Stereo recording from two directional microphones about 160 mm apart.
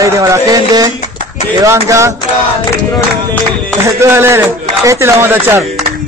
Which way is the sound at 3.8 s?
15° right (ahead or behind).